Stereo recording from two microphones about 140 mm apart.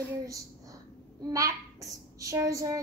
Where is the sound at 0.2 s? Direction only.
25° right (ahead or behind).